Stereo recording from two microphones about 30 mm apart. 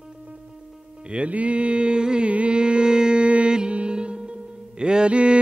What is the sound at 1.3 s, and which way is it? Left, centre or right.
Mantra, right.